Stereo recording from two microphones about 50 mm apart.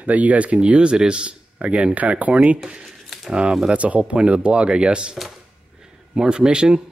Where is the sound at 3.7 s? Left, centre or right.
Right.